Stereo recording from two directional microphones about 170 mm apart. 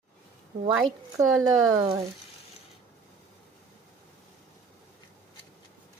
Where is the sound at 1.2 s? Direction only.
20° right (ahead or behind).